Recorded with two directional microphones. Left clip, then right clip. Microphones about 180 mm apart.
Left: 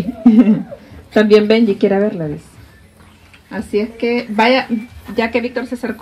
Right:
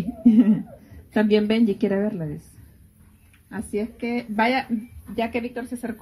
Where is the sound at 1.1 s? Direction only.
65° right (ahead or behind).